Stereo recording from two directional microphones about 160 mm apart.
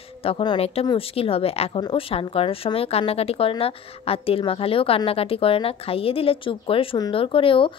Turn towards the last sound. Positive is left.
turn(degrees=35)  # may be behind; listen again after turning